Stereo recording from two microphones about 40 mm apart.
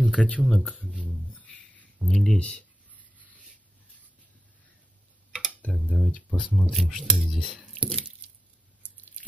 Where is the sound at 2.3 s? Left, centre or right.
Left.